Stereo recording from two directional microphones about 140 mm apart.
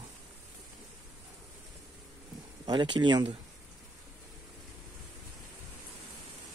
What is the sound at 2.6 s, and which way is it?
Speech, 35° right (ahead or behind).